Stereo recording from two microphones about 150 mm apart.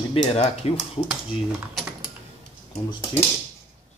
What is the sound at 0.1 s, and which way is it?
Speech, 45° left (ahead or behind).